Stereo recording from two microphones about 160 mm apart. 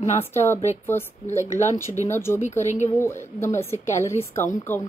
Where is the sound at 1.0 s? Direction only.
15° left (ahead or behind).